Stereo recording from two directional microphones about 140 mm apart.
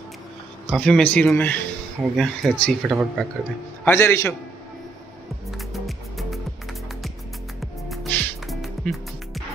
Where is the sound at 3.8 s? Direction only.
20° left (ahead or behind).